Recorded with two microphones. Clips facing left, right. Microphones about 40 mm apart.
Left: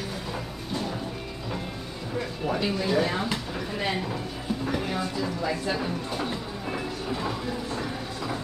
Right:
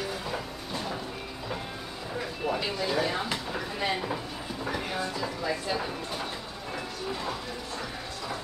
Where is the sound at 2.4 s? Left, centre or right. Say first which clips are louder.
Left 3 dB; centre.